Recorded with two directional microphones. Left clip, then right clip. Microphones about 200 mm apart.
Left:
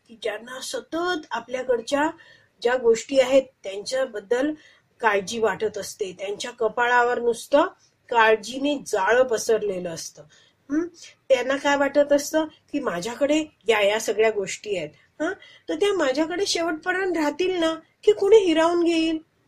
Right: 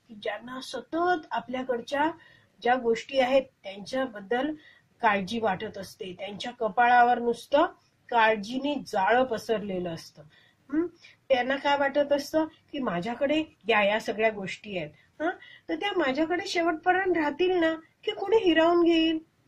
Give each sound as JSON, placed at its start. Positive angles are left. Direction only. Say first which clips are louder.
{"t": 0.2, "sound": "a woman's voice", "louder": "left 4 dB", "side_deg": 35}
{"t": 11.2, "sound": "speech", "louder": "left 4 dB", "side_deg": 40}
{"t": 18.0, "sound": "speech", "louder": "left 8 dB", "side_deg": 35}